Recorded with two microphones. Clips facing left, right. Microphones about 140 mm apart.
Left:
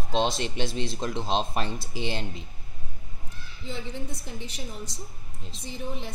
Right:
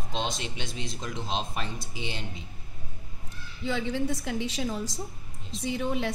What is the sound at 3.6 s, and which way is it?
A woman's voice, 90° right.